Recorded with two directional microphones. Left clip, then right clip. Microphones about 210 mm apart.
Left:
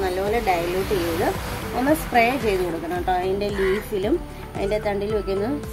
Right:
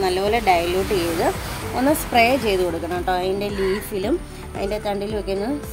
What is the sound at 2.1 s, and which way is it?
A woman's voice, 45° right (ahead or behind).